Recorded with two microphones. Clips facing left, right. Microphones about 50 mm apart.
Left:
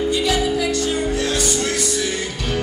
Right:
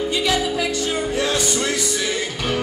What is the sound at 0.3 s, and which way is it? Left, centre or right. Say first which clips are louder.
Music: left 2 dB; right.